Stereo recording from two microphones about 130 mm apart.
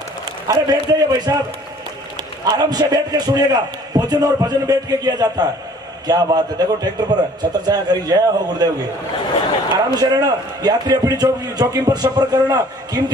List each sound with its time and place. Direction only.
0.5 s a man's voice: 30° right (ahead or behind)
2.4 s a man's voice: 30° right (ahead or behind)
9.9 s a man's voice: 30° right (ahead or behind)